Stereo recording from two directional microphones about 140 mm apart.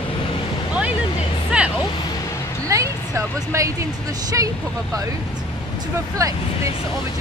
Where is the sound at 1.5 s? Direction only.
5° right (ahead or behind).